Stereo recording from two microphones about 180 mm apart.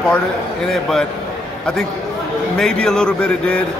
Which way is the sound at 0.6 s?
Centre (ahead or behind).